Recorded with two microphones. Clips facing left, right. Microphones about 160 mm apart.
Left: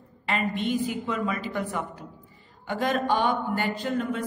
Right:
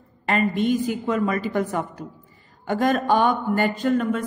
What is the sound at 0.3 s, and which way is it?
Speech, 45° right (ahead or behind).